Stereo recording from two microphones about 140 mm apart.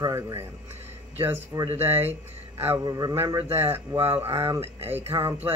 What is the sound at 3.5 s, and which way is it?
Speech, 15° right (ahead or behind).